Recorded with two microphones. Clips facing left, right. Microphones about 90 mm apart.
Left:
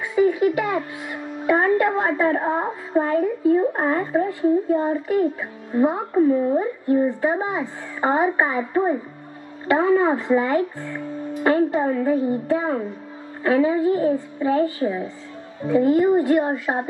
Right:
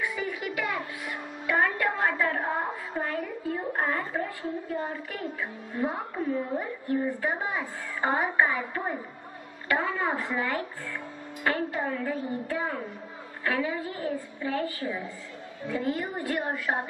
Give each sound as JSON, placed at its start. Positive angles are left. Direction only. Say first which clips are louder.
{"t": 0.0, "sound": "a child's voice", "louder": "left 14 dB", "side_deg": 25}